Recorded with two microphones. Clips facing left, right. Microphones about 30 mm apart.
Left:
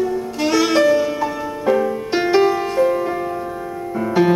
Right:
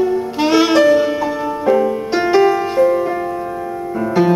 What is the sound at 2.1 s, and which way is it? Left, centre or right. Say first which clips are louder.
Music: right 2 dB; centre.